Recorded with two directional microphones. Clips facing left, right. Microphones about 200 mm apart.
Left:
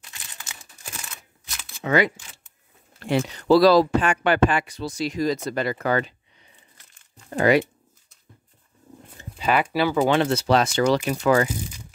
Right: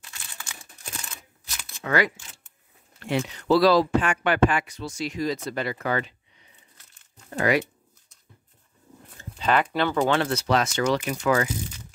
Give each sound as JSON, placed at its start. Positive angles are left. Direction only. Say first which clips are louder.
{"t": 1.9, "sound": "speech", "louder": "left 3 dB", "side_deg": 20}
{"t": 3.0, "sound": "speech", "louder": "left 3 dB", "side_deg": 35}
{"t": 7.2, "sound": "speech", "louder": "left 4 dB", "side_deg": 30}
{"t": 9.2, "sound": "speech", "louder": "left 1 dB", "side_deg": 10}
{"t": 10.3, "sound": "speech", "louder": "left 4 dB", "side_deg": 30}